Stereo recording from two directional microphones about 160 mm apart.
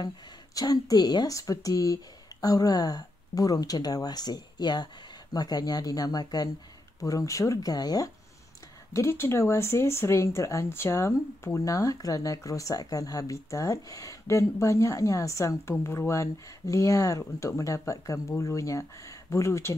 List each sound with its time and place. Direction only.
0.6 s speech: 25° left (ahead or behind)